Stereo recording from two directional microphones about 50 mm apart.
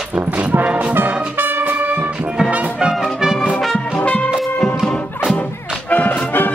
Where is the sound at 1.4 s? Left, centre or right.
Right.